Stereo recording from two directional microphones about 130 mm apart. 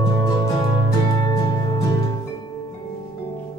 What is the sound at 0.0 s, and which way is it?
Music, 25° left (ahead or behind).